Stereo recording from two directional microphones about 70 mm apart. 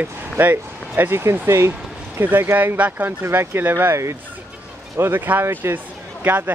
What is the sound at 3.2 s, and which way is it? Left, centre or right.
Speech, right.